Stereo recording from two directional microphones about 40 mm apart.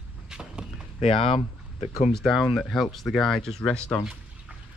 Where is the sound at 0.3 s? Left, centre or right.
Centre.